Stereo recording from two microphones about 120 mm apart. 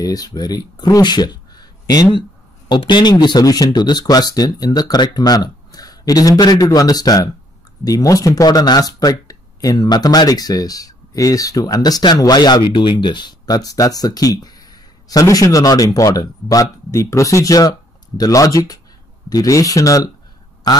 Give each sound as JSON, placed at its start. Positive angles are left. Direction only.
{"t": 0.0, "sound": "speech", "side_deg": 30}